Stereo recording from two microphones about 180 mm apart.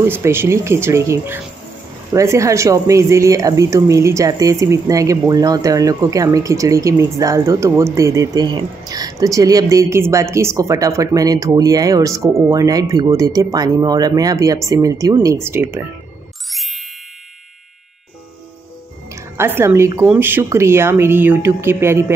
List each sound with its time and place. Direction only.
0.0 s speech: 15° right (ahead or behind)
16.4 s ding: centre (ahead or behind)
19.1 s speech: 15° right (ahead or behind)